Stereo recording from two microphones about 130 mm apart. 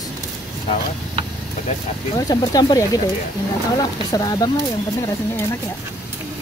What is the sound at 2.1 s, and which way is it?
Speech, 30° left (ahead or behind).